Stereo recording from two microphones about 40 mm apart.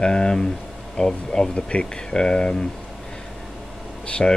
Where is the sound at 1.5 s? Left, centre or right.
Left.